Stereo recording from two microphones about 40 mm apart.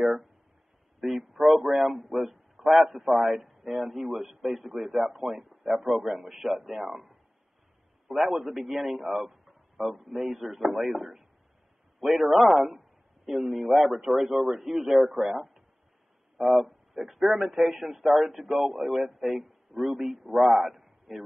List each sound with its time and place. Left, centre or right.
0.0 s a man's voice: centre